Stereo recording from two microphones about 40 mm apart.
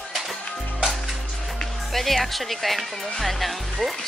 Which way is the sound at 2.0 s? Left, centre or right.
Centre.